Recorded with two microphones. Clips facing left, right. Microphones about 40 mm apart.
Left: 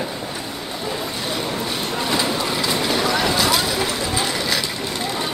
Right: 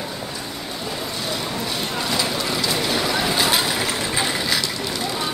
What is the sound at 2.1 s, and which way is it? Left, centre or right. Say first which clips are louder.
Vehicle: left 2 dB; centre.